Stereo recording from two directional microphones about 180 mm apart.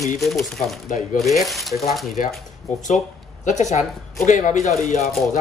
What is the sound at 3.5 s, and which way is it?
Speech, 40° left (ahead or behind).